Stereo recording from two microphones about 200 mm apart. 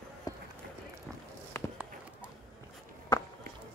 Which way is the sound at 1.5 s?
10° left (ahead or behind).